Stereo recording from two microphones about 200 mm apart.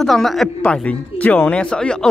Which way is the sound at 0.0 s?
Centre (ahead or behind).